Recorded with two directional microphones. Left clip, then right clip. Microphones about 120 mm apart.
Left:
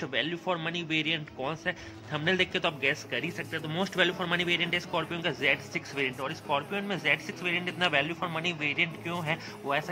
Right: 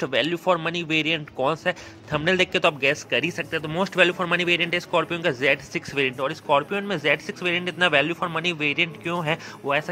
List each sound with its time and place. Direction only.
0.0 s a man's voice: 50° right (ahead or behind)